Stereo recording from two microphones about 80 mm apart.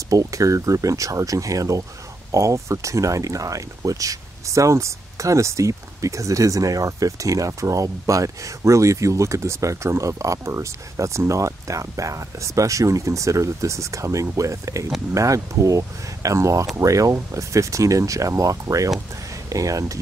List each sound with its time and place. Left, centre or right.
0.1 s speech: right